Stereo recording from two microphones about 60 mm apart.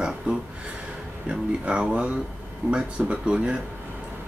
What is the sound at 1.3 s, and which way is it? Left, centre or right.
Speech, centre.